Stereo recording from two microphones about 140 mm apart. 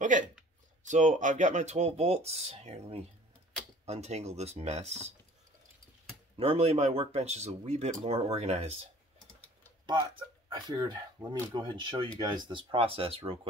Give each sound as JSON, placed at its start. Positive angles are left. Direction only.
{"t": 0.8, "sound": "speech", "side_deg": -60}
{"t": 6.3, "sound": "speech", "side_deg": -45}
{"t": 10.5, "sound": "speech", "side_deg": -30}